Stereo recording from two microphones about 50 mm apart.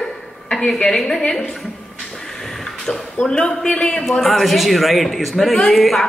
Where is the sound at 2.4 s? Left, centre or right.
Centre.